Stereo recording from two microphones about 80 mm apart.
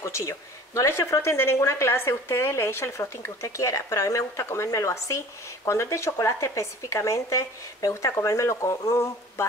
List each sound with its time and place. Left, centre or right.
0.0 s a woman's voice: left